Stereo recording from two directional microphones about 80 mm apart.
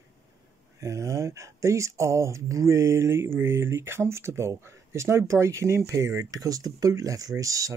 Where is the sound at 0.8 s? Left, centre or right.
Right.